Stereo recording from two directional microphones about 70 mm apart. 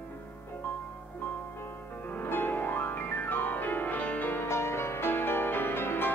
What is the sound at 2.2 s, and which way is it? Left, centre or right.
Music, left.